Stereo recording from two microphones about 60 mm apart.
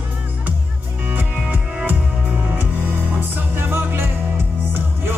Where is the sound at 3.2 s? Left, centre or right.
Right.